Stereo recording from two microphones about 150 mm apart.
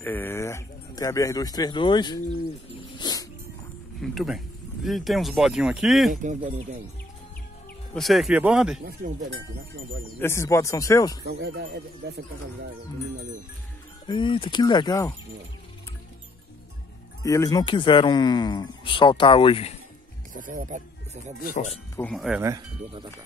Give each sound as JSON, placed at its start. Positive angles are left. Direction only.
{"t": 0.0, "sound": "speech", "side_deg": 15}
{"t": 3.0, "sound": "dog", "side_deg": 25}
{"t": 4.0, "sound": "speech", "side_deg": 0}
{"t": 7.9, "sound": "speech", "side_deg": 0}
{"t": 10.1, "sound": "speech", "side_deg": 15}
{"t": 11.2, "sound": "speech", "side_deg": -90}
{"t": 14.0, "sound": "speech", "side_deg": 30}
{"t": 17.2, "sound": "speech", "side_deg": 20}
{"t": 20.3, "sound": "speech", "side_deg": -60}
{"t": 22.0, "sound": "speech", "side_deg": 0}